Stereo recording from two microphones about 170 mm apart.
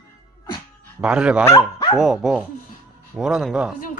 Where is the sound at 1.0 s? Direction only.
5° right (ahead or behind).